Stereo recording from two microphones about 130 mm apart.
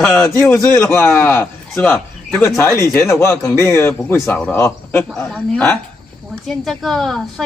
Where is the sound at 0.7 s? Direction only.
20° left (ahead or behind).